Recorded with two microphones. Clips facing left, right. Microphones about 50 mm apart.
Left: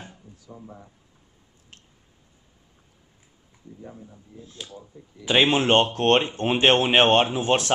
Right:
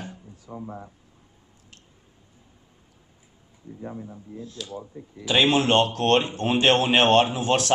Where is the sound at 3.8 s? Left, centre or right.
Right.